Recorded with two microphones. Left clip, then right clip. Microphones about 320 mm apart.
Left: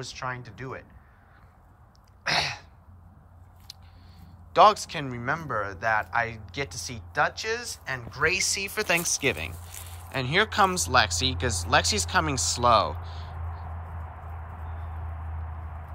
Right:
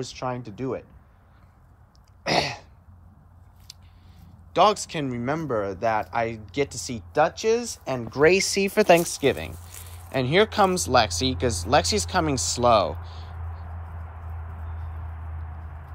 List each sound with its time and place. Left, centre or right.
0.0 s speech: centre
2.2 s throat clearing: centre
3.7 s a sound: centre
4.5 s speech: centre